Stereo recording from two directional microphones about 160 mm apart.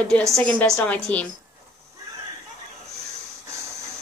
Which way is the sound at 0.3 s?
10° left (ahead or behind).